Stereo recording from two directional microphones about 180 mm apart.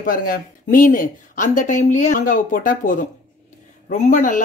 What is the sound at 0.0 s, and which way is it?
Speech, 50° left (ahead or behind).